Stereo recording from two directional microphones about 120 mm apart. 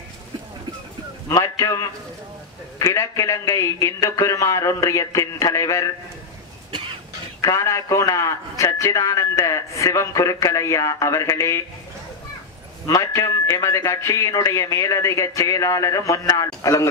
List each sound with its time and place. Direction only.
1.3 s a man's voice: 25° left (ahead or behind)
7.4 s a man's voice: 25° left (ahead or behind)
12.8 s a man's voice: 30° left (ahead or behind)